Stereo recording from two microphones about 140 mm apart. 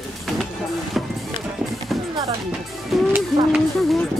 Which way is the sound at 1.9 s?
Centre (ahead or behind).